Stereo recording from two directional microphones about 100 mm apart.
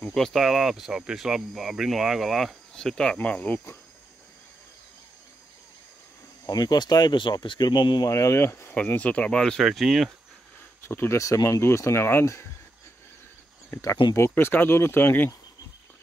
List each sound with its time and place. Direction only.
0.1 s speech: centre (ahead or behind); by 3.7 s 15° left (ahead or behind)
6.4 s speech: 40° left (ahead or behind)
8.1 s speech: 30° left (ahead or behind); by 10.1 s centre (ahead or behind)
10.8 s speech: 25° left (ahead or behind)
14.1 s speech: 25° left (ahead or behind)